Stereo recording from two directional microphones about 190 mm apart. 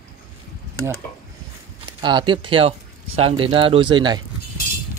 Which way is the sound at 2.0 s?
25° right (ahead or behind).